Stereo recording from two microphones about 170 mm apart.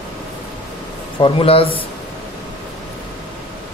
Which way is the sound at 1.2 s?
35° left (ahead or behind).